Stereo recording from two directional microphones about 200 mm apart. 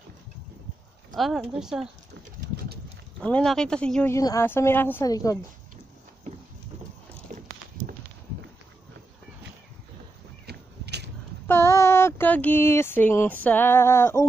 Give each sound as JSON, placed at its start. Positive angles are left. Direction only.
{"t": 1.1, "sound": "speech", "side_deg": 0}
{"t": 3.2, "sound": "speech", "side_deg": 5}
{"t": 7.3, "sound": "walk", "side_deg": -35}
{"t": 10.4, "sound": "a sound", "side_deg": -55}
{"t": 11.4, "sound": "speech", "side_deg": 15}